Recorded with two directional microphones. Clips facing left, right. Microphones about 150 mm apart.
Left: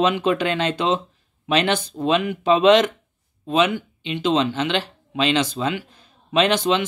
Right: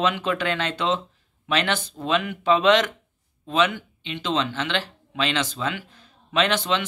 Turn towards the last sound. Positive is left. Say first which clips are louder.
# left 4 dB
turn(degrees=15)  # may be behind; listen again after turning